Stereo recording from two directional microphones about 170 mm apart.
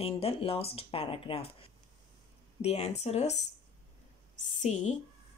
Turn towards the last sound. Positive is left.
turn(degrees=45)  # may be behind; listen again after turning